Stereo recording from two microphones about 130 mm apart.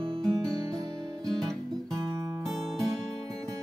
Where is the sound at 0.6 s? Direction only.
25° right (ahead or behind).